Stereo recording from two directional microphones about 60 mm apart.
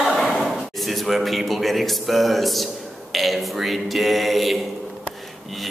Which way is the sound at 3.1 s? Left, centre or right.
Centre.